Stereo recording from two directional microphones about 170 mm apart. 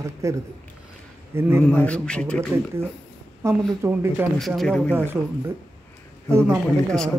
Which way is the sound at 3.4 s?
15° right (ahead or behind).